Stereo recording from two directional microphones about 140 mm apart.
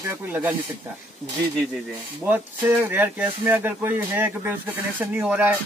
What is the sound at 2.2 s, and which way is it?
Speech, 15° right (ahead or behind).